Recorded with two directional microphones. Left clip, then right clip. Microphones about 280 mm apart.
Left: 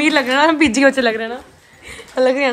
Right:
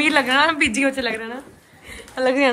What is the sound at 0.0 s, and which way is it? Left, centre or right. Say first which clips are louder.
A woman's voice: left 3 dB; centre.